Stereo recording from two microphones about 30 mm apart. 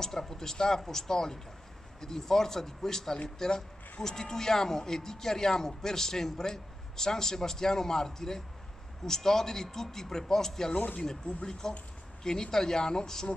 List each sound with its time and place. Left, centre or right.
0.0 s speech: centre